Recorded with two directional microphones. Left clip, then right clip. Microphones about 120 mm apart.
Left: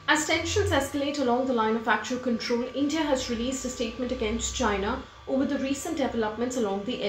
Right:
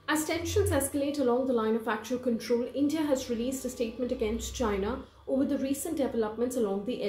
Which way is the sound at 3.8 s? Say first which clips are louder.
Right 1 dB; 40° right (ahead or behind).